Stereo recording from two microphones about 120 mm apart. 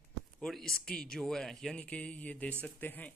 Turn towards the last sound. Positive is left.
turn(degrees=15)  # may be behind; listen again after turning